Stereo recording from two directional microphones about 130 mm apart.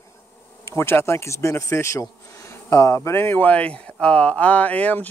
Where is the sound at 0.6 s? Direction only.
20° left (ahead or behind).